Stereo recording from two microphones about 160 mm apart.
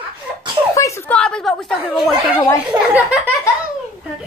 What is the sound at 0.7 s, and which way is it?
Speech, 20° left (ahead or behind).